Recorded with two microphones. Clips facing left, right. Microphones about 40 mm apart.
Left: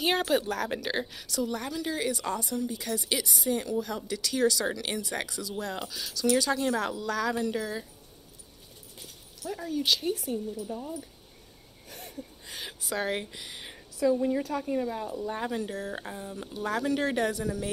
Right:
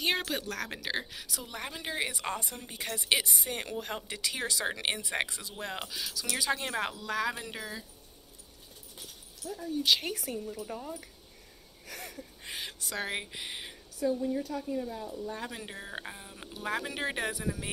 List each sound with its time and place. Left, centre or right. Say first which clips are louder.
0.0 s a woman's voice: left 5 dB; centre
1.2 s speech: left 8 dB; centre; by 4.2 s right
4.2 s speech: left 8 dB; right
5.9 s speech: left 13 dB; centre; by 6.9 s right
6.9 s speech: left 3 dB; centre
9.5 s speech: left 3 dB; left
10.0 s speech: left 5 dB; right
12.5 s speech: left 4 dB; centre
13.1 s speech: left 3 dB; centre
13.9 s a woman's voice: left 5 dB; left
14.6 s speech: left 5 dB; left
15.6 s speech: left 6 dB; centre